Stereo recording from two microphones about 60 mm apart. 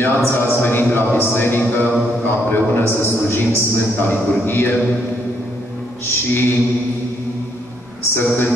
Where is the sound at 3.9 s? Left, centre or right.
Left.